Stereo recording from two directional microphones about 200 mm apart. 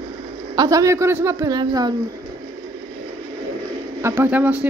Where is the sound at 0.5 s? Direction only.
15° right (ahead or behind).